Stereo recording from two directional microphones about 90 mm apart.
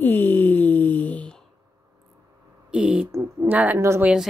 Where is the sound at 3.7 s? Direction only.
30° right (ahead or behind).